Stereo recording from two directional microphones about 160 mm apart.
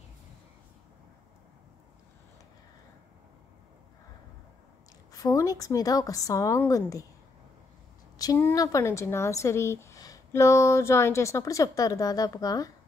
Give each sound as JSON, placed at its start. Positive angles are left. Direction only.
{"t": 5.1, "sound": "speech", "side_deg": 20}
{"t": 8.2, "sound": "speech", "side_deg": 20}